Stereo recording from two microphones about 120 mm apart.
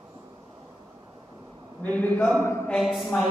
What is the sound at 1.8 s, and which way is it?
Speech, 15° left (ahead or behind).